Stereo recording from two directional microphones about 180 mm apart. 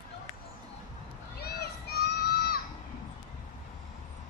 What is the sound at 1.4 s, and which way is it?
Crowd, 60° left (ahead or behind).